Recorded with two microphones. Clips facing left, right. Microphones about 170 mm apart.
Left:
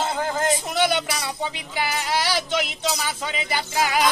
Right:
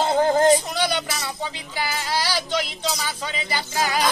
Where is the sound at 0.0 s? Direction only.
35° right (ahead or behind).